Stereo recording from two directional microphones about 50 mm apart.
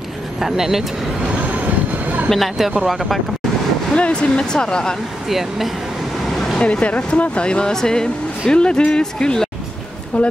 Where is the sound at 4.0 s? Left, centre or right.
Left.